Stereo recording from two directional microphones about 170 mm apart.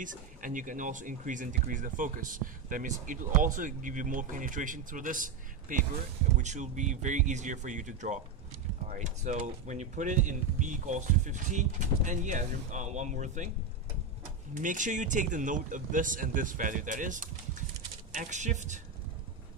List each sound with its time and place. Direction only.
0.0 s speech: 50° right (ahead or behind)
14.5 s speech: 50° right (ahead or behind)